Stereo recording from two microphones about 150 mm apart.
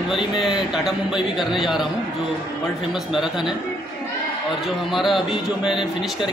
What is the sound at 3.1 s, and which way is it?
Speech, 5° right (ahead or behind).